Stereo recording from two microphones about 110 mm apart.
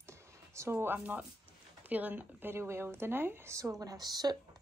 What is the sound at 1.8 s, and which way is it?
Speech, 15° right (ahead or behind).